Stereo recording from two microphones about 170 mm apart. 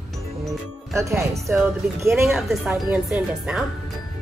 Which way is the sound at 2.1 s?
Centre (ahead or behind).